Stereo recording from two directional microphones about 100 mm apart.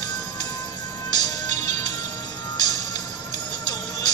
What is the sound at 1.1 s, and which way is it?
Music, 40° left (ahead or behind).